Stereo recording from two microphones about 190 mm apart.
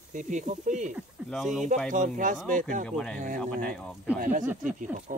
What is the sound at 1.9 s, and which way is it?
Speech, 40° right (ahead or behind).